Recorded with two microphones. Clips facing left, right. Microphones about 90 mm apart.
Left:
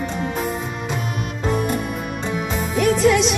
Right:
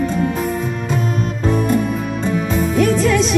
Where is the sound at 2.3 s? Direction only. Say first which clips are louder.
Right 6 dB; 15° left (ahead or behind).